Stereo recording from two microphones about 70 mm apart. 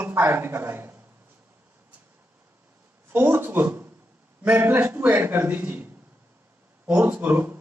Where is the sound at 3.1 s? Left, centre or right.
Right.